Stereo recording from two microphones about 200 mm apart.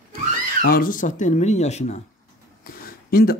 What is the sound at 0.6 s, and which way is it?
Speech, 45° left (ahead or behind).